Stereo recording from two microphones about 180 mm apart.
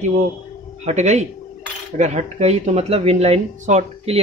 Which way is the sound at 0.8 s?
40° right (ahead or behind).